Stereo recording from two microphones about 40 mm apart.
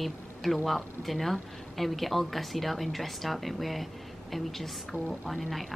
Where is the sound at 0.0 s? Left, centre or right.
Centre.